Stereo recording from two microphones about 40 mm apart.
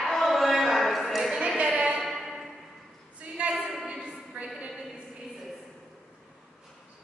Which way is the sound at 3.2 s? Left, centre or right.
Right.